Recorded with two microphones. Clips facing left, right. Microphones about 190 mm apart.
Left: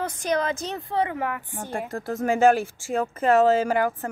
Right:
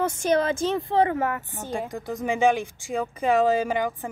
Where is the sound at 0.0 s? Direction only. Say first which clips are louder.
Right 3 dB; 25° right (ahead or behind).